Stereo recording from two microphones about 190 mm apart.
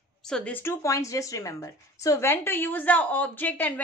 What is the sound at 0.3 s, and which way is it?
A woman's voice, 10° left (ahead or behind).